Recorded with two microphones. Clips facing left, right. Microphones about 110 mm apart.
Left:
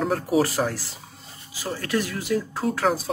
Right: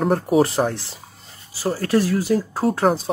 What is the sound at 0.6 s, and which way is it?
Speech, 25° right (ahead or behind).